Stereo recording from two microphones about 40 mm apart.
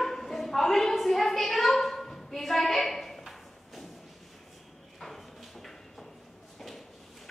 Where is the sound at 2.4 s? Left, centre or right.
Centre.